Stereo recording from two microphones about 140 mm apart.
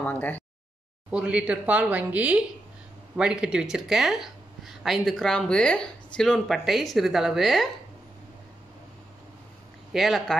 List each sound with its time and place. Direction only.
0.0 s a sound: 15° left (ahead or behind)
1.1 s speech: 5° right (ahead or behind)
9.9 s speech: centre (ahead or behind)